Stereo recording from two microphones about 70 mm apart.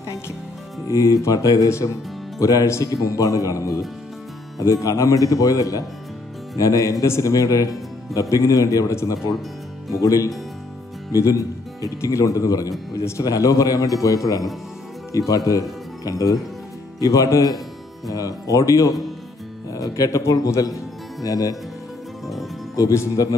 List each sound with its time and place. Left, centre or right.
0.8 s speech: left
22.8 s speech: left